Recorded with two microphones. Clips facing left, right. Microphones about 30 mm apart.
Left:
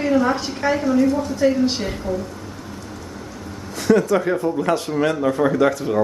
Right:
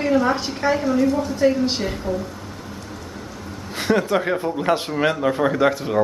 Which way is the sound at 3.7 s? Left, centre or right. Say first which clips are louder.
Left 3 dB; right.